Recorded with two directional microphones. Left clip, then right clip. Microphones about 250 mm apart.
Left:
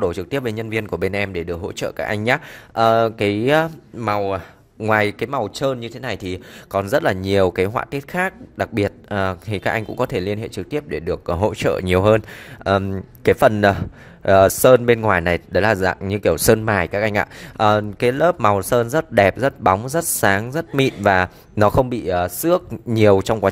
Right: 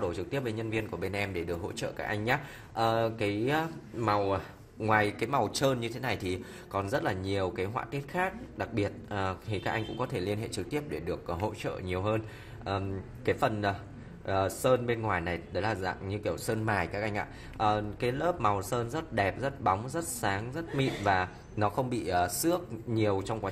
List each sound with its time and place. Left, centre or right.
0.0 s a man's voice: left